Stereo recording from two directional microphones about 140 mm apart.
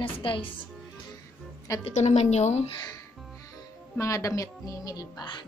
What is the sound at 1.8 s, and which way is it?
Speech, 55° left (ahead or behind).